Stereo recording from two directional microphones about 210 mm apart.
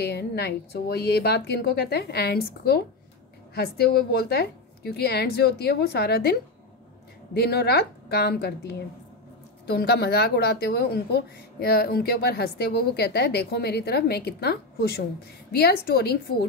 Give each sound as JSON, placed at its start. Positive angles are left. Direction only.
{"t": 0.0, "sound": "a woman's voice", "side_deg": 50}
{"t": 7.3, "sound": "a woman's voice", "side_deg": 50}